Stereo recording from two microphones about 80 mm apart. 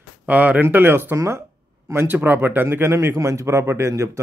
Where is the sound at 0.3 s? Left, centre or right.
Centre.